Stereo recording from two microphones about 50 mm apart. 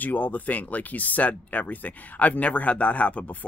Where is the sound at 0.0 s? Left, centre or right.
Left.